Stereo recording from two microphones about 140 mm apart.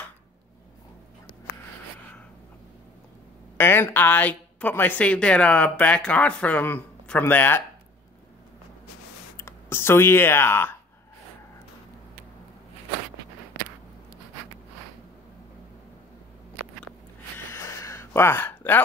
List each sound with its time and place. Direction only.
3.5 s speech: 15° left (ahead or behind)
9.4 s speech: 15° left (ahead or behind)
17.5 s a sound: 20° left (ahead or behind)